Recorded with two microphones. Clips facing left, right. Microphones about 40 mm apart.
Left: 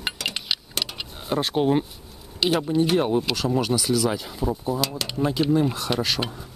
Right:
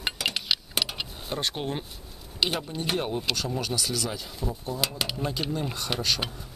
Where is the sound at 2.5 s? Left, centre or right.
Centre.